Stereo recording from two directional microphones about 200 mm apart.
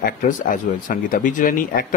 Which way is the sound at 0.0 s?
40° left (ahead or behind).